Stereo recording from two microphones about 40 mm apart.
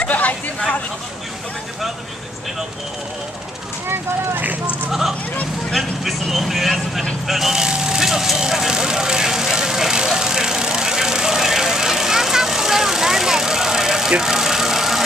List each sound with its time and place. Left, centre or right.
0.0 s a sound: left
5.7 s speech: centre
7.5 s speech: centre
8.4 s vehicle: centre